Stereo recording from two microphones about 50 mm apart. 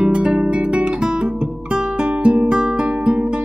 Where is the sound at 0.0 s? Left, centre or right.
Right.